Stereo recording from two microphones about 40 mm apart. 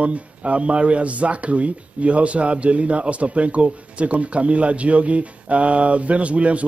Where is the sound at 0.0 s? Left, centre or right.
Right.